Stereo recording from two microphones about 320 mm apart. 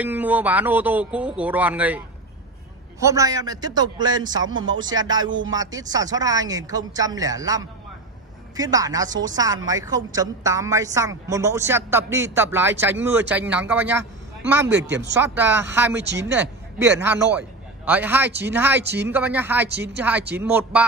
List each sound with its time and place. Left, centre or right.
0.0 s a woman's voice: centre
4.5 s speech: right
4.7 s a woman's voice: centre
16.0 s speech: right
16.3 s a man's voice: centre